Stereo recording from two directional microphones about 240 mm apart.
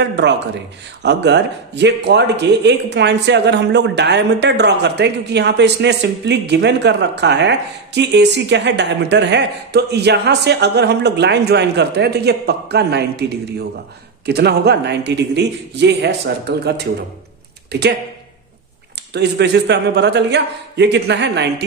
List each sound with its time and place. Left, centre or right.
0.0 s speech: right
19.1 s speech: right